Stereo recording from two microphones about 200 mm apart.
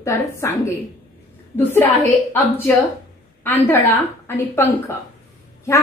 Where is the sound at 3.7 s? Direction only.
10° left (ahead or behind).